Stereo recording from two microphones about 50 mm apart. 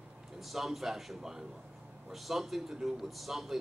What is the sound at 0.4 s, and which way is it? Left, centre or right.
A man's voice, centre.